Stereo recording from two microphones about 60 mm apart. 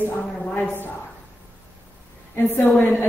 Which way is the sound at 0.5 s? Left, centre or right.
Left.